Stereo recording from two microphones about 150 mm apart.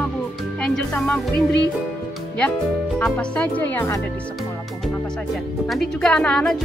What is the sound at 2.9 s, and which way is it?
Speech, 10° left (ahead or behind).